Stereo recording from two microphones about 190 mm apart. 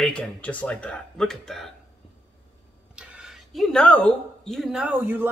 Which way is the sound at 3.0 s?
5° right (ahead or behind).